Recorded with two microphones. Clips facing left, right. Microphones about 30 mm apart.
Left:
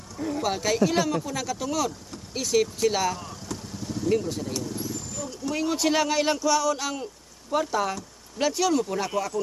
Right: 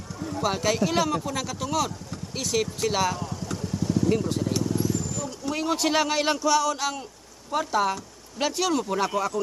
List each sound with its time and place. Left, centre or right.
0.4 s speech: centre